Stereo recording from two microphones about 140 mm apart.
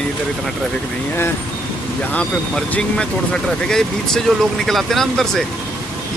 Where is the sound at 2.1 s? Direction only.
10° left (ahead or behind).